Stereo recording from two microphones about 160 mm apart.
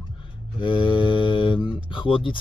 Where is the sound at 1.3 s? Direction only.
30° left (ahead or behind).